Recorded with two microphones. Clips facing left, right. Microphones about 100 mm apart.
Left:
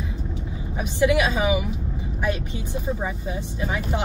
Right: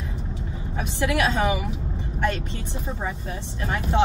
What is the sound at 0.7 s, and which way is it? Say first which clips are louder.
A woman's voice: left 4 dB; 15° left (ahead or behind).